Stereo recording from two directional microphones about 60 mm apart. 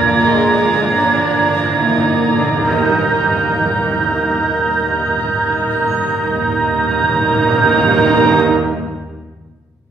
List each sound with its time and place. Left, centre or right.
0.0 s music: centre
2.6 s music: centre
6.9 s music: centre